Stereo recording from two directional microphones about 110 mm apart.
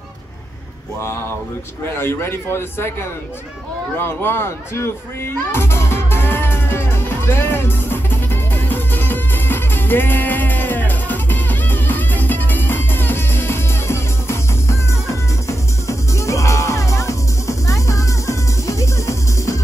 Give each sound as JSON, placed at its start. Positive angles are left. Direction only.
{"t": 2.0, "sound": "a man's voice", "side_deg": 20}
{"t": 4.0, "sound": "music", "side_deg": 20}